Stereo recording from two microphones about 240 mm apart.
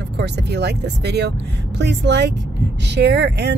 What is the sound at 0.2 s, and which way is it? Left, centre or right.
Speech, right.